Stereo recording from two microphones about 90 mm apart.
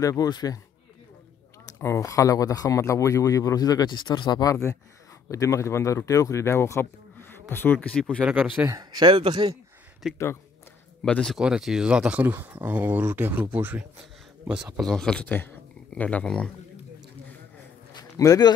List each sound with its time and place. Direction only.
0.0 s speech: 40° left (ahead or behind)
1.8 s speech: 30° left (ahead or behind)
2.0 s speech: 40° left (ahead or behind)
3.9 s speech: 60° left (ahead or behind)
5.3 s speech: 35° left (ahead or behind); by 8.2 s 10° left (ahead or behind)
8.2 s speech: 15° right (ahead or behind)
8.6 s speech: 45° right (ahead or behind)
9.1 s speech: 75° right (ahead or behind)
10.0 s speech: 10° right (ahead or behind)
11.1 s speech: 10° left (ahead or behind)
11.3 s speech: 5° right (ahead or behind)
14.8 s speech: 5° left (ahead or behind)
17.9 s a sound: 40° left (ahead or behind)